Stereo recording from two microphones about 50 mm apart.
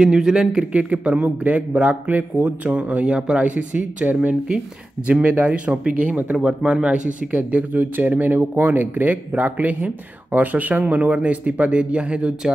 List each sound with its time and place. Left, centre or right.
0.0 s speech: centre
0.7 s speech: right
6.3 s speech: right